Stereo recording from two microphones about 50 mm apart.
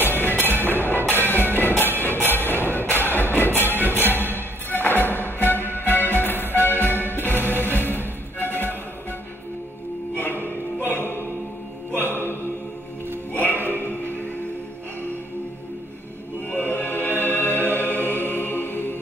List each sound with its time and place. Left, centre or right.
0.0 s music: left
10.1 s music: left
11.9 s mantra: left
13.3 s music: left
16.4 s music: left